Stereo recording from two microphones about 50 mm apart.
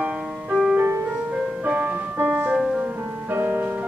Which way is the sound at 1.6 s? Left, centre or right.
Right.